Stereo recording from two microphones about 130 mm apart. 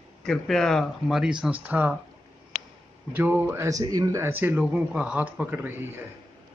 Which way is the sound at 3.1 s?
15° right (ahead or behind).